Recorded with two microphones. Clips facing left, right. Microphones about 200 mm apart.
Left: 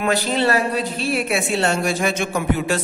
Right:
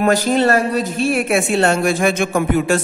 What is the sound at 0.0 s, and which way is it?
Speech, 45° right (ahead or behind).